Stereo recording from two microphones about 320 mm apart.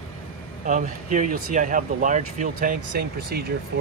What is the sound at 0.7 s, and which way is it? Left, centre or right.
Speech, right.